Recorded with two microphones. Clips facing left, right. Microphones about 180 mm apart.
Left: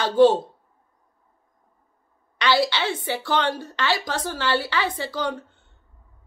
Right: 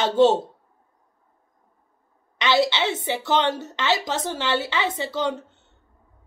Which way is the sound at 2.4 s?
20° right (ahead or behind).